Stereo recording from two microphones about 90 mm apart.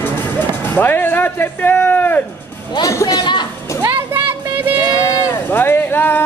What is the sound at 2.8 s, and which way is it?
Speech, 40° left (ahead or behind).